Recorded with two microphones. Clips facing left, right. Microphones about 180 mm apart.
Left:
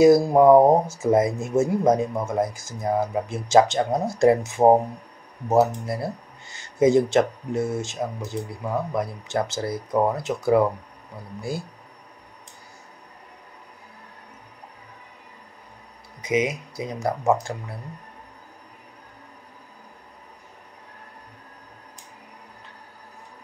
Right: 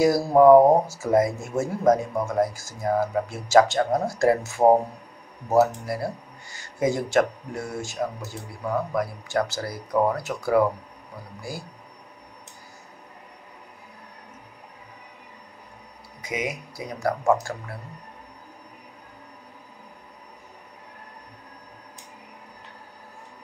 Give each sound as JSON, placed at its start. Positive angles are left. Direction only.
{"t": 0.0, "sound": "speech", "side_deg": 20}
{"t": 5.9, "sound": "speech", "side_deg": 25}
{"t": 16.2, "sound": "speech", "side_deg": 20}